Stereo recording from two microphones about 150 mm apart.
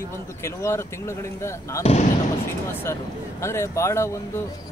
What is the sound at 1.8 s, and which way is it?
Speech, 40° left (ahead or behind).